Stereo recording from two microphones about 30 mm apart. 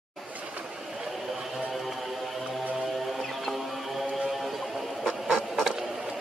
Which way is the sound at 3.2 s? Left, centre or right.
Centre.